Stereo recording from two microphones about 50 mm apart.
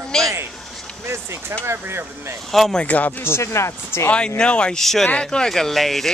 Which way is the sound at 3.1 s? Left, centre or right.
Left.